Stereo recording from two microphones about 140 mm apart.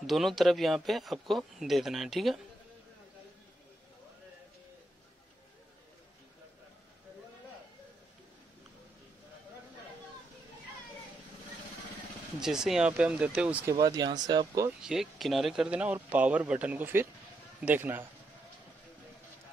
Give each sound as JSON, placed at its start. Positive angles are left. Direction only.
{"t": 0.0, "sound": "speech", "side_deg": 0}
{"t": 12.4, "sound": "a man's voice", "side_deg": -5}
{"t": 13.7, "sound": "speech", "side_deg": -25}
{"t": 14.8, "sound": "a man's voice", "side_deg": -5}